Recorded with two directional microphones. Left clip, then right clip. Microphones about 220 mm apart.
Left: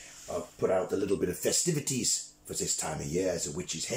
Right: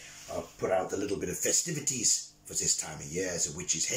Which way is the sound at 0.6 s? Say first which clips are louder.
Left 1 dB; 15° left (ahead or behind).